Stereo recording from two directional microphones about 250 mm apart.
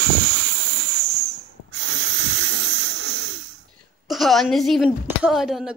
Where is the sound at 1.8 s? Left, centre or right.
Right.